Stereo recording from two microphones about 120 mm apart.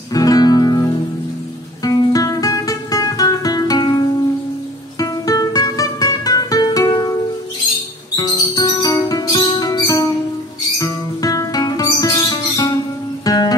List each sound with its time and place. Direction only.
0.1 s music: 30° left (ahead or behind)
8.2 s music: 30° left (ahead or behind)